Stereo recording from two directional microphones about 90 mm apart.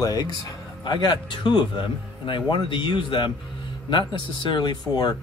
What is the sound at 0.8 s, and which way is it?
Speech, 55° left (ahead or behind).